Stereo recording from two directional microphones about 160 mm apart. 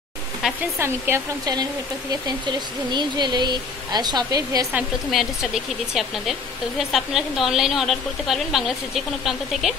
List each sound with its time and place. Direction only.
0.7 s speech: 15° right (ahead or behind)
4.7 s a woman's voice: 5° right (ahead or behind)